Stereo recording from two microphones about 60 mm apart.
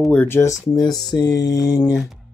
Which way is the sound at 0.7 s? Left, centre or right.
Left.